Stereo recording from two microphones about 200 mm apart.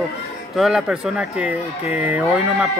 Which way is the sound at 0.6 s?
Centre (ahead or behind).